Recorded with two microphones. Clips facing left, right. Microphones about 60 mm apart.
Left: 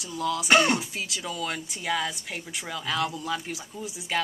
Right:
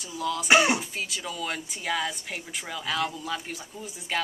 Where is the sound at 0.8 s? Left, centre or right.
Centre.